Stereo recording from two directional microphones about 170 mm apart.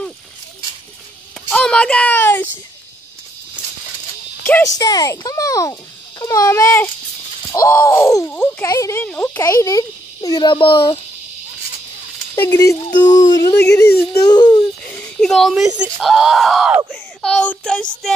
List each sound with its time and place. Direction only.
1.5 s a child's voice: 5° left (ahead or behind)
4.7 s speech: 20° left (ahead or behind)
12.4 s speech: 20° left (ahead or behind)
14.9 s a sound: 5° left (ahead or behind)
15.8 s speech: centre (ahead or behind)
16.9 s child singing: 5° left (ahead or behind)